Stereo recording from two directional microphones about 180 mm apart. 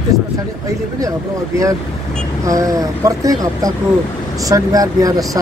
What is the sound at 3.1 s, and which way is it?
Speech, 20° right (ahead or behind).